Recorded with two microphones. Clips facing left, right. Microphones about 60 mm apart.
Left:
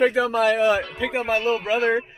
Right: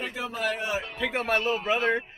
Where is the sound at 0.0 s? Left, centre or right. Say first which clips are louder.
Left 12 dB; left.